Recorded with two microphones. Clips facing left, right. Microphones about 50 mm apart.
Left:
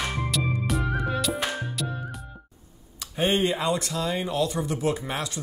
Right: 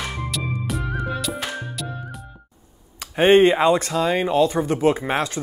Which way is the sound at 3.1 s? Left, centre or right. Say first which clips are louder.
Right 10 dB; right.